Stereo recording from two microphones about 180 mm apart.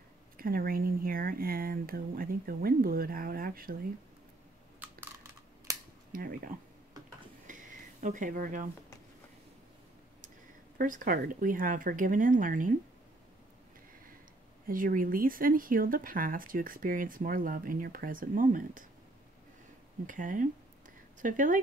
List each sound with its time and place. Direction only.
0.4 s speech: 55° right (ahead or behind)
4.7 s computer keyboard: 10° right (ahead or behind)
6.1 s speech: 50° right (ahead or behind)
7.4 s a sound: 45° right (ahead or behind)
10.8 s speech: 50° right (ahead or behind)
14.7 s speech: 50° right (ahead or behind)
20.1 s speech: 45° right (ahead or behind)